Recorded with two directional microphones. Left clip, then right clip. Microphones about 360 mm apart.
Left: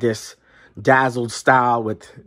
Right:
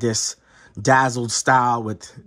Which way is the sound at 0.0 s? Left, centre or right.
Centre.